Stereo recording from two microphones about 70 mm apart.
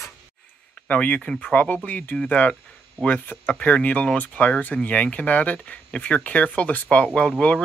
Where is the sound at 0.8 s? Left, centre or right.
Left.